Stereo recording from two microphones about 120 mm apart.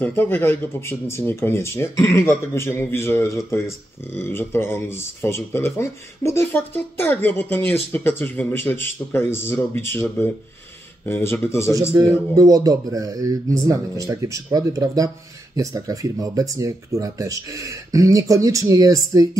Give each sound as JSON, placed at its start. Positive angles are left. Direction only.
{"t": 0.0, "sound": "speech", "side_deg": 15}
{"t": 12.0, "sound": "speech", "side_deg": -30}